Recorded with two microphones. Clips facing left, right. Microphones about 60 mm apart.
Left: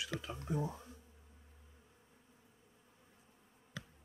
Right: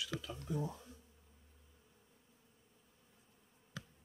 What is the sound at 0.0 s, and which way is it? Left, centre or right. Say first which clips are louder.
Speech: left 1 dB; left.